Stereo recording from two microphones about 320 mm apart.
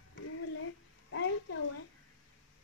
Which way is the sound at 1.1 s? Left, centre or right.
Left.